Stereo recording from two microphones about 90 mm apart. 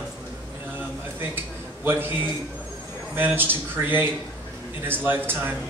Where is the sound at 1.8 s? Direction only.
20° right (ahead or behind).